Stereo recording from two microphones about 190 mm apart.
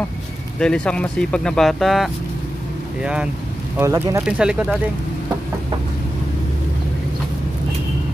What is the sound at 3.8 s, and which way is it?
Speech, 15° right (ahead or behind).